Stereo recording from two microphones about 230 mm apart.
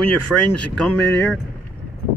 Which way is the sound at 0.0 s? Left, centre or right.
Centre.